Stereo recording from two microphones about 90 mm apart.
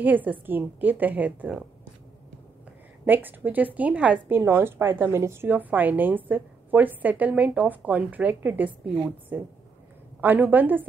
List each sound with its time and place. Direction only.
0.0 s a woman's voice: 20° right (ahead or behind)
3.1 s a woman's voice: 20° right (ahead or behind)
4.4 s a woman's voice: 30° right (ahead or behind)